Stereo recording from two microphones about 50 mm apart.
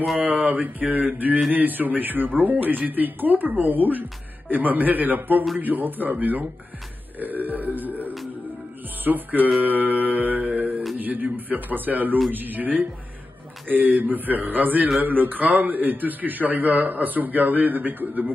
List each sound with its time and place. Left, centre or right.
0.2 s a man's voice: right
7.2 s burping: right
9.0 s a man's voice: right
9.6 s music: right
11.0 s a man's voice: right